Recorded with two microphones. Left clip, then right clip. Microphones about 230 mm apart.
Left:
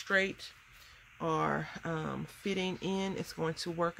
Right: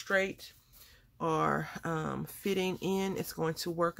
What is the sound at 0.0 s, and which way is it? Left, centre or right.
Speech, centre.